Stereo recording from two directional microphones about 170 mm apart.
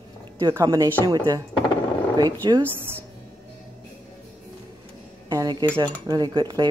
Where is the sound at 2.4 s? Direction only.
25° right (ahead or behind).